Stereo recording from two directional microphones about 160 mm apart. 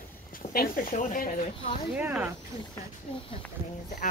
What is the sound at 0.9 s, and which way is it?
Speech, 55° left (ahead or behind).